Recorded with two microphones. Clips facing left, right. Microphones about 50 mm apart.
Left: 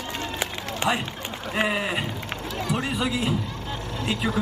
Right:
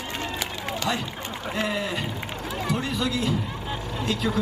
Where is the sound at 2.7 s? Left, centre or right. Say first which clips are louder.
Left 1 dB; centre.